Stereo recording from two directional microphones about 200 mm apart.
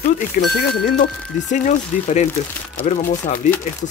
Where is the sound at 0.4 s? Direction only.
40° left (ahead or behind).